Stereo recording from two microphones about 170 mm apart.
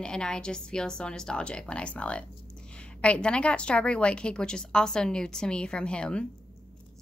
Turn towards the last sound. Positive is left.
turn(degrees=5)  # may be behind; listen again after turning